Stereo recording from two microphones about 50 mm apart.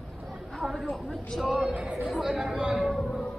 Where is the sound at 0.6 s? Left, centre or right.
Centre.